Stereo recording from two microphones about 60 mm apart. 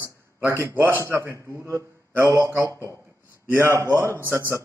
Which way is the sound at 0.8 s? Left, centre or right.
Right.